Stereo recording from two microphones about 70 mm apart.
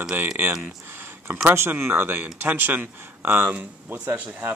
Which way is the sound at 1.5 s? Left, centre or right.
Right.